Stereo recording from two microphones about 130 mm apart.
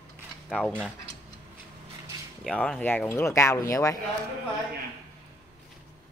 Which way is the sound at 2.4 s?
5° left (ahead or behind).